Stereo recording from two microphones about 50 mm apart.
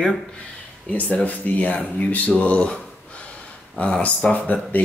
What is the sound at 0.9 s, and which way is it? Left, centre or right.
Speech, left.